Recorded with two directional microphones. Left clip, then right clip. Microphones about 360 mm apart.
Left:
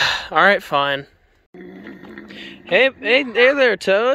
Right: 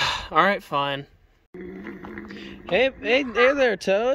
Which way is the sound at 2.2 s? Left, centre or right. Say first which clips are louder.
Left 6 dB; centre.